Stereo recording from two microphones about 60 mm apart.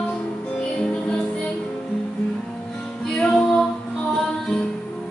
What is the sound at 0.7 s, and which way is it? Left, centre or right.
Music, centre.